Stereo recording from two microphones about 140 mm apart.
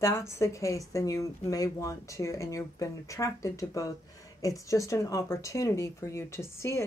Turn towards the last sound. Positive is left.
turn(degrees=20)  # may be behind; listen again after turning